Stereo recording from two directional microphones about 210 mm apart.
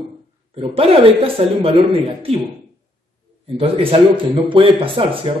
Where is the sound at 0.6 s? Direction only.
25° right (ahead or behind).